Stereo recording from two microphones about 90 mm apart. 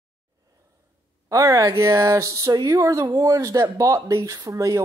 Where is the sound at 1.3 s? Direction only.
35° right (ahead or behind).